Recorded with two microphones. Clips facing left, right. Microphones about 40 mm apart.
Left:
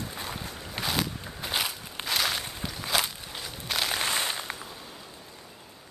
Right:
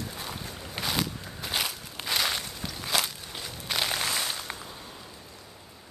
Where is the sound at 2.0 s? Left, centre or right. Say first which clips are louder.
Even; centre.